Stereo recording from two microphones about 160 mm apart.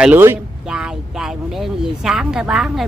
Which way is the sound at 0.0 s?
10° right (ahead or behind).